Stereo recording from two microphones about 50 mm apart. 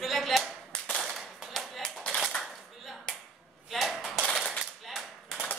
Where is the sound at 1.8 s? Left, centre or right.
Centre.